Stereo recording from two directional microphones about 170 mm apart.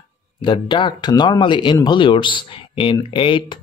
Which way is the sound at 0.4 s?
25° left (ahead or behind).